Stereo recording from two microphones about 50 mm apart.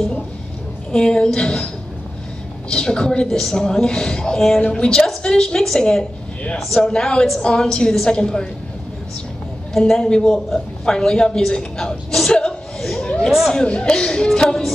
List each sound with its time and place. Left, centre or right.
0.9 s a woman's voice: centre
2.7 s a woman's voice: centre
3.3 s a woman's voice: centre
9.8 s a woman's voice: centre